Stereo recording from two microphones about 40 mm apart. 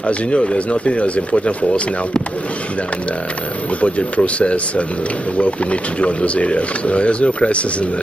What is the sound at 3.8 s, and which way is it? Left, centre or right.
Speech, left.